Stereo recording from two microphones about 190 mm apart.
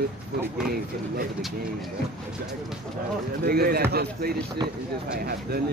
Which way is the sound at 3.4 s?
55° right (ahead or behind).